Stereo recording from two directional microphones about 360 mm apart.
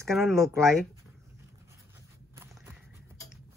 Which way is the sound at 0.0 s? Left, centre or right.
Centre.